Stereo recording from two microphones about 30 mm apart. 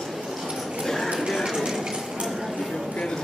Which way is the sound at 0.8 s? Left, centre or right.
Centre.